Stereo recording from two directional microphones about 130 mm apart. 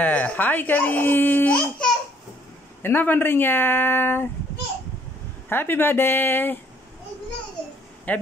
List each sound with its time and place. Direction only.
0.0 s speech: 10° left (ahead or behind)
5.5 s speech: 15° left (ahead or behind)
8.1 s speech: 10° left (ahead or behind)